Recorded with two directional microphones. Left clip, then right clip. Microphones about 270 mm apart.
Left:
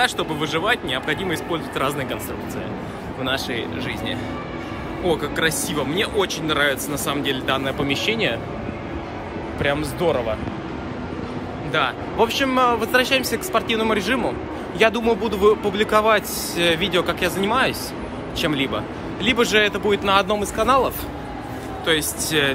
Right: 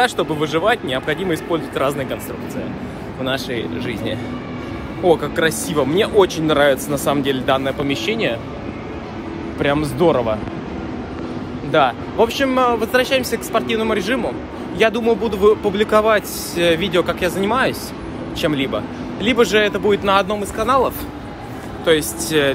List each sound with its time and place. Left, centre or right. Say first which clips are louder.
0.0 s speech: right 4 dB; centre
3.3 s speech: right 2 dB; centre
9.6 s speech: right 5 dB; right
11.7 s speech: right 6 dB; centre
12.2 s speech: right 2 dB; centre